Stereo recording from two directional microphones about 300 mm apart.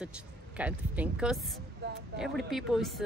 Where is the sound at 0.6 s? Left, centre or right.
Centre.